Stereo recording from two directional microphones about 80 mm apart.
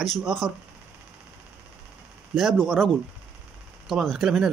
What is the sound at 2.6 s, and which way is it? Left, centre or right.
Speech, centre.